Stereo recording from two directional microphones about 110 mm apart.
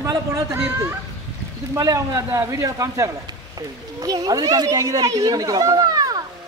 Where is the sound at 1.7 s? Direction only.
35° right (ahead or behind).